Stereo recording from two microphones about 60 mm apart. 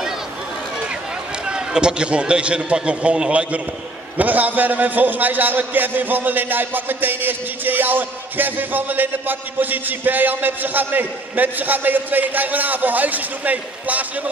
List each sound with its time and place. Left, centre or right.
1.4 s a man's voice: centre